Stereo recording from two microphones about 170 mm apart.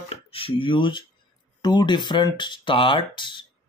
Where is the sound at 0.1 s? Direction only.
35° left (ahead or behind).